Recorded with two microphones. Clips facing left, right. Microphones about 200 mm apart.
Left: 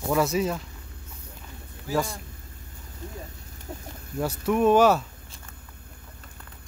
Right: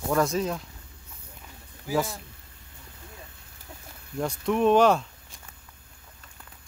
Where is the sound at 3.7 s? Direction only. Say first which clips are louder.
Left 8 dB; 45° left (ahead or behind).